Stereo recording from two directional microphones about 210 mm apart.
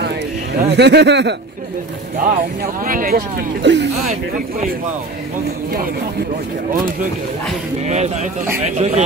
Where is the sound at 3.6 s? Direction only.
55° right (ahead or behind).